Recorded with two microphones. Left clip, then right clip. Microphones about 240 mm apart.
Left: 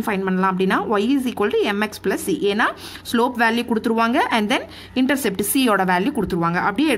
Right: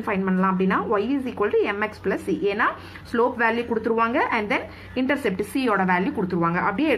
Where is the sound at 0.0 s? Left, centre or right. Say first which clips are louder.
Left 3 dB; left.